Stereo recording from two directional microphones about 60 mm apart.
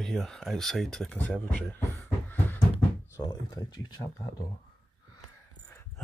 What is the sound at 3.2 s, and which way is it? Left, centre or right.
Speech, left.